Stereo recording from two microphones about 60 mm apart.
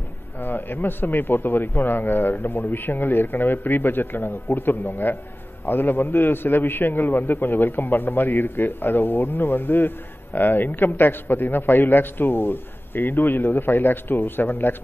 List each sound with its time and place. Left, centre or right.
0.4 s a man's voice: left